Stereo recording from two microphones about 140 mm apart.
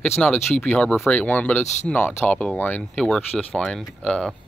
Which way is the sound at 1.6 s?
55° left (ahead or behind).